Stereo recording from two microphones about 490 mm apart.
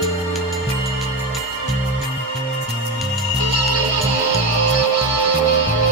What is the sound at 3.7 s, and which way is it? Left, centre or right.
Music, left.